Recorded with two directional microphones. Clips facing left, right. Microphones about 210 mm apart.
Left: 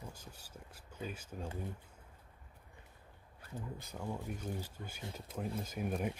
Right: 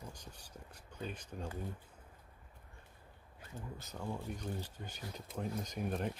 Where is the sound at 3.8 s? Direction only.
10° left (ahead or behind).